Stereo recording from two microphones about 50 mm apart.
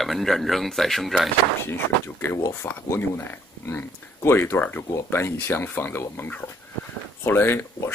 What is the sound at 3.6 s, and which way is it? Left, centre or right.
Speech, left.